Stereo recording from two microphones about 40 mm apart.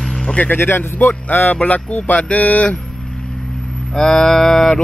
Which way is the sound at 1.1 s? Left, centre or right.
Left.